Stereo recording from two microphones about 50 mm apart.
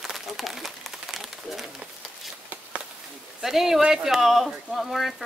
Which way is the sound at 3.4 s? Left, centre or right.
Centre.